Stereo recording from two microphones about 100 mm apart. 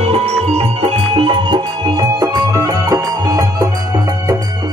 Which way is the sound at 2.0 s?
40° right (ahead or behind).